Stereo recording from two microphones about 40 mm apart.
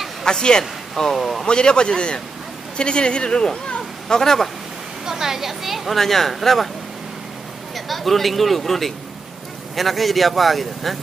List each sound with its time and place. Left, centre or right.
0.2 s a man's voice: centre
1.4 s a man's voice: left
5.0 s speech: centre
5.9 s speech: centre
7.7 s speech: centre